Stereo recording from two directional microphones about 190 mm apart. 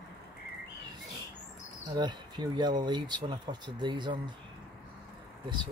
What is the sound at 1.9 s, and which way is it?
Speech, 25° right (ahead or behind).